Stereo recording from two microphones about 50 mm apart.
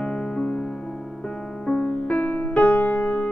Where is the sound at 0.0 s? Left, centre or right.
Centre.